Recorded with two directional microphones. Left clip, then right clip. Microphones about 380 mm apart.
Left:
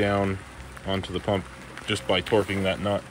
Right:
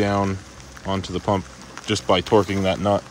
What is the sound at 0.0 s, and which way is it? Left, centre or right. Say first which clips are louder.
Speech: right 3 dB; centre.